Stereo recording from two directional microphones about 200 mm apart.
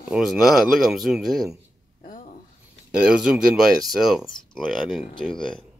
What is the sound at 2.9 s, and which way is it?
Speech, 5° right (ahead or behind).